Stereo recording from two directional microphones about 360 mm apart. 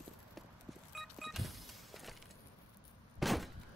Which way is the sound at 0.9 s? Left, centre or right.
Centre.